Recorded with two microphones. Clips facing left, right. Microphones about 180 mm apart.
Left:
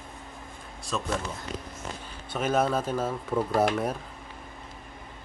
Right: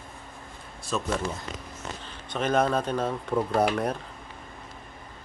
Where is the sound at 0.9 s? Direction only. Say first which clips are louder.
Right 2 dB; centre (ahead or behind).